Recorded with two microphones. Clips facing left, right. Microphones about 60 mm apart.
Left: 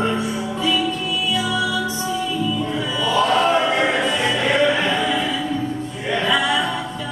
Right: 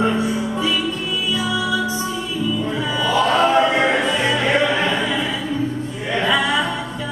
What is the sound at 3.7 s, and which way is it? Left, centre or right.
Music, centre.